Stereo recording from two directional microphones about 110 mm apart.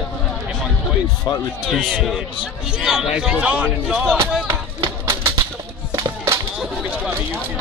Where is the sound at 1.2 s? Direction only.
40° left (ahead or behind).